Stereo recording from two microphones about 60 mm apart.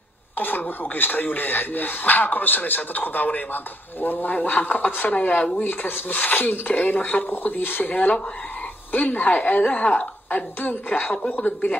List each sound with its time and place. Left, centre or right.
0.4 s speech: left
5.6 s speech: left